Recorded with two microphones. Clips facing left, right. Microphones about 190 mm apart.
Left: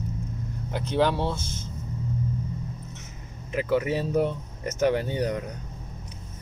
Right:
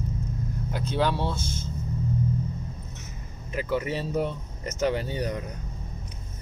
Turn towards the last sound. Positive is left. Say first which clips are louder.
# left 3 dB
turn(degrees=20)  # may be behind; listen again after turning